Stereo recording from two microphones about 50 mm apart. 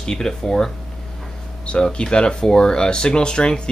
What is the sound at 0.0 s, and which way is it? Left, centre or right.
Speech, centre.